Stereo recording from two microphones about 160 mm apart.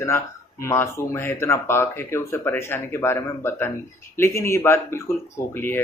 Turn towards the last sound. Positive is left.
turn(degrees=15)  # may be behind; listen again after turning